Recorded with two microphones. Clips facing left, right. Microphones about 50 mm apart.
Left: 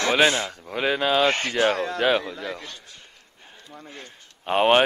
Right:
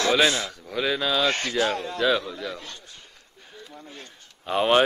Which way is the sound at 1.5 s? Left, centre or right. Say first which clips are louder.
Left 3 dB; left.